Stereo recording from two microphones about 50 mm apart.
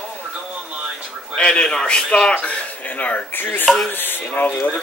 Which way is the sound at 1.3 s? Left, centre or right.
Centre.